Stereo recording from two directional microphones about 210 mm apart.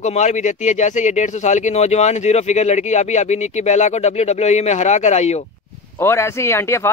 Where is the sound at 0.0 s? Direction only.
35° left (ahead or behind).